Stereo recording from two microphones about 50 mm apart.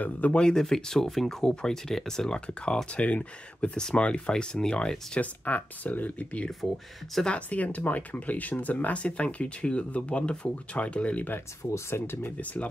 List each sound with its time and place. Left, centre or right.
0.0 s speech: left
0.4 s speech: centre
5.2 s speech: left
6.6 s speech: centre
7.2 s speech: left
11.9 s speech: left